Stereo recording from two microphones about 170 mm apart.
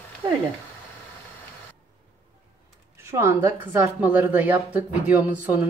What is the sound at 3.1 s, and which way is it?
A woman's voice, 15° right (ahead or behind).